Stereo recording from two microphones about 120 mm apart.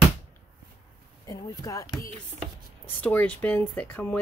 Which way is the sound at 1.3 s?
30° left (ahead or behind).